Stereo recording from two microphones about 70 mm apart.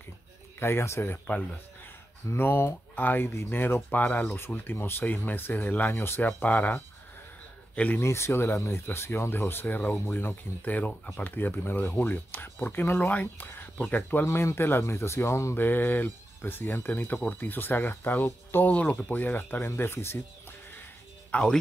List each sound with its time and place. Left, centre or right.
0.6 s speech: left; by 8.0 s centre
8.0 s speech: left
9.9 s speech: left
10.6 s speech: left
14.2 s speech: left
15.6 s speech: left
21.3 s speech: centre